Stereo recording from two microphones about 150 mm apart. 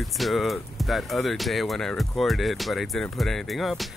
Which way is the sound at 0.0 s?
Centre (ahead or behind).